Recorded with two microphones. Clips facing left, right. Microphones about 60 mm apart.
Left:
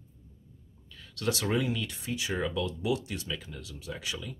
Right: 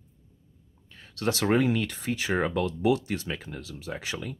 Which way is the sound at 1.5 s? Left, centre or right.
Right.